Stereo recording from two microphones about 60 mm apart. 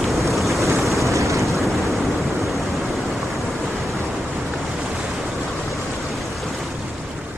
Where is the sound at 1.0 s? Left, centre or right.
Right.